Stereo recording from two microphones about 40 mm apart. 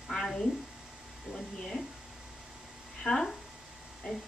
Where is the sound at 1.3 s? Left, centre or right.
Centre.